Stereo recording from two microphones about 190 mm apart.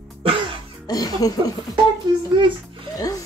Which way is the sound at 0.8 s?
20° left (ahead or behind).